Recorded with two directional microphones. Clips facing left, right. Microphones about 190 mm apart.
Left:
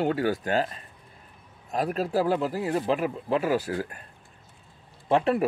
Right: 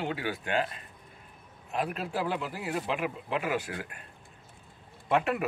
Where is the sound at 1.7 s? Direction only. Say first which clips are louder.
Left 6 dB; 40° left (ahead or behind).